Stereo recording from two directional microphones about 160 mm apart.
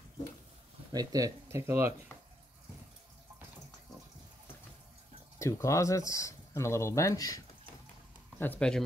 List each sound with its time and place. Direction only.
0.9 s speech: 20° right (ahead or behind)
5.4 s speech: 20° left (ahead or behind)
8.4 s speech: 10° left (ahead or behind)